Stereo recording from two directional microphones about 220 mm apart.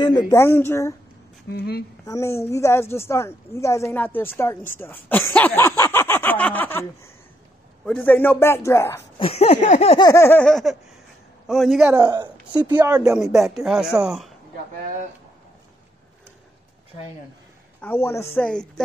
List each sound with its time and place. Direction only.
0.0 s a woman's voice: 20° left (ahead or behind)
1.5 s a woman's voice: 45° left (ahead or behind)
2.0 s a woman's voice: 15° left (ahead or behind)
9.2 s a sound: 30° left (ahead or behind); by 10.8 s centre (ahead or behind)
11.4 s speech: centre (ahead or behind)
11.9 s speech: 15° right (ahead or behind); by 14.3 s centre (ahead or behind)
17.7 s a woman's voice: 10° left (ahead or behind)